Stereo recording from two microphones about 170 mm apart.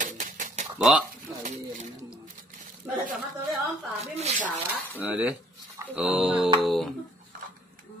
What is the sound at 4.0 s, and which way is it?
Speech, 40° right (ahead or behind).